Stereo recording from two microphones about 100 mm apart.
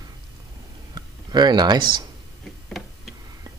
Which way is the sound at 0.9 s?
45° right (ahead or behind).